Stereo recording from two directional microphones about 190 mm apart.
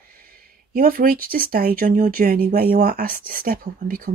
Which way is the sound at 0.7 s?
50° right (ahead or behind).